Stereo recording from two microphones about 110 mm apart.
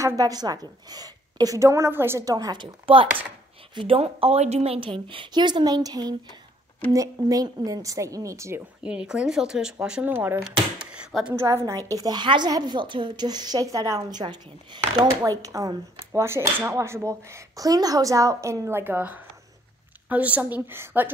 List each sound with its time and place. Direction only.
0.0 s a woman's voice: 30° right (ahead or behind)
2.5 s a woman's voice: 50° right (ahead or behind); by 4.7 s 75° right (ahead or behind)
4.7 s a woman's voice: 50° right (ahead or behind); by 8.6 s 25° right (ahead or behind)
8.8 s speech: 10° right (ahead or behind)
10.1 s speech: 20° right (ahead or behind)
10.9 s speech: 5° right (ahead or behind)
11.3 s a woman's voice: 25° right (ahead or behind)
14.1 s a woman's voice: 40° right (ahead or behind)
15.2 s a woman's voice: 30° right (ahead or behind)